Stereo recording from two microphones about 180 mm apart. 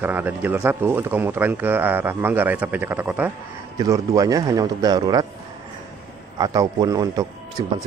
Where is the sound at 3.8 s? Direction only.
20° right (ahead or behind).